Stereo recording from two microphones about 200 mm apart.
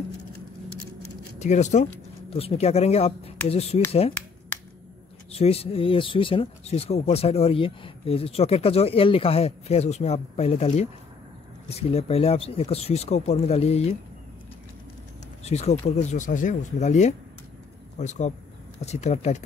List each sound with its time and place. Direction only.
1.4 s speech: 35° left (ahead or behind)
4.5 s a sound: 10° left (ahead or behind)
5.3 s speech: 30° left (ahead or behind)
15.4 s speech: 30° left (ahead or behind)